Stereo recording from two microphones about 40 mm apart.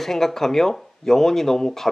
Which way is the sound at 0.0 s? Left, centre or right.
Centre.